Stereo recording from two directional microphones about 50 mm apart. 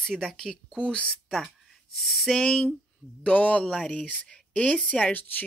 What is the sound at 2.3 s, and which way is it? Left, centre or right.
Speech, centre.